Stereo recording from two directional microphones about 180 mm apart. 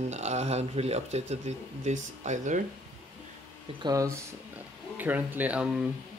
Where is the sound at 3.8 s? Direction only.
20° right (ahead or behind).